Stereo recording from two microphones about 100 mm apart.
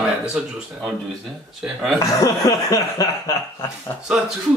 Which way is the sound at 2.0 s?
35° left (ahead or behind).